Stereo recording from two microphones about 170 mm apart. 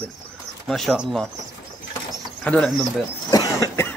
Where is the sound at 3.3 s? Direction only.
20° left (ahead or behind).